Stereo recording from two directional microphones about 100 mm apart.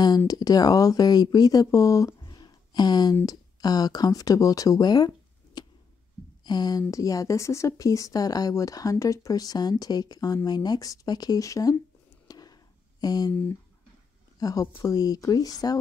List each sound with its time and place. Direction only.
0.3 s speech: 40° left (ahead or behind)
12.3 s a sound: 40° left (ahead or behind)
13.0 s speech: 40° left (ahead or behind)
13.3 s speech: 20° left (ahead or behind)
14.4 s speech: 35° left (ahead or behind)